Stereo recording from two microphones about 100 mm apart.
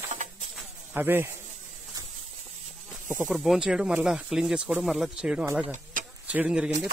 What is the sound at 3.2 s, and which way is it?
Speech, 5° right (ahead or behind).